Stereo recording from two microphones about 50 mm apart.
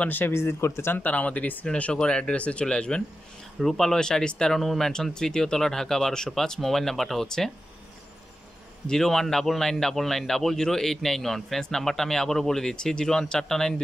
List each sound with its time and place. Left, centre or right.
0.3 s speech: left
0.9 s speech: left
2.0 s a man's voice: centre
3.5 s a man's voice: centre
8.8 s a man's voice: centre